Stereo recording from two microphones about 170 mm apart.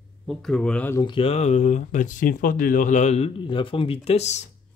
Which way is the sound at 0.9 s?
30° left (ahead or behind).